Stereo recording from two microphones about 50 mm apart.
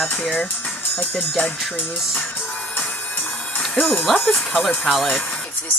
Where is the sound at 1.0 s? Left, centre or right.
Left.